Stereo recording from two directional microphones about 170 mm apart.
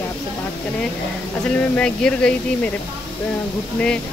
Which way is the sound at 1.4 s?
5° left (ahead or behind).